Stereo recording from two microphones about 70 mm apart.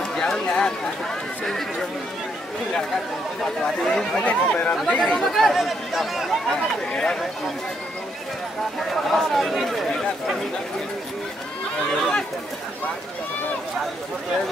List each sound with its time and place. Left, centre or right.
0.1 s a sound: centre
1.4 s speech: centre
3.8 s speech: centre
4.2 s speech: left
5.3 s speech: centre
6.5 s speech: centre
8.7 s speech: centre
11.9 s speech: centre